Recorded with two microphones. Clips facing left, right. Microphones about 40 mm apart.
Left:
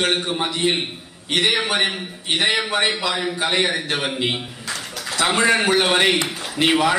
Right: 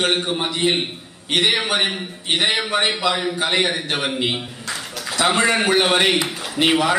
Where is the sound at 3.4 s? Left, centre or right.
Centre.